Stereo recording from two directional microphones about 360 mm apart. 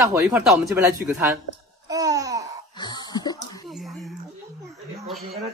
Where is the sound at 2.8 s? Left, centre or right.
Centre.